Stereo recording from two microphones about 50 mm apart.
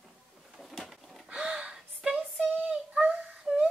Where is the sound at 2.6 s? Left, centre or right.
Right.